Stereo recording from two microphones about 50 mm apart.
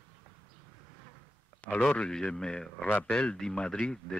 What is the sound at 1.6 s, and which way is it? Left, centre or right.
A man's voice, left.